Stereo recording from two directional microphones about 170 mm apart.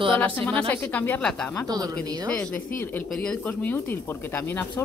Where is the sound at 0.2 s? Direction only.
10° left (ahead or behind).